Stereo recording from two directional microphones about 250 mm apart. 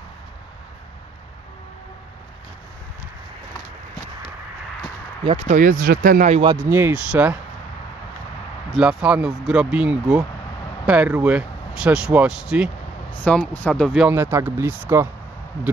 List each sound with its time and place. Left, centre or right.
5.2 s speech: right
6.5 s speech: centre
8.7 s speech: centre